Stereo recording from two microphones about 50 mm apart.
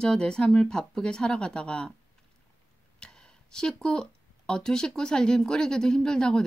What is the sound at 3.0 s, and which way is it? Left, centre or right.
Speech, centre.